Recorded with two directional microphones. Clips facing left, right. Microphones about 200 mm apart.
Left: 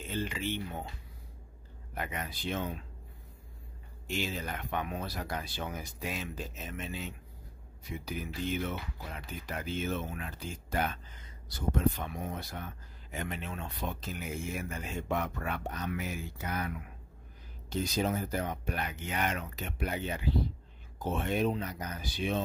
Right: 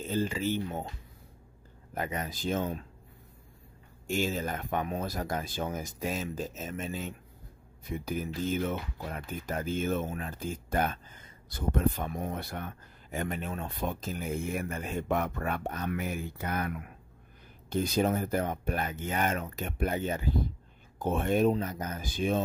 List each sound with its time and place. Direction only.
0.0 s speech: 40° right (ahead or behind)
2.0 s speech: 40° right (ahead or behind)
4.1 s speech: 45° right (ahead or behind)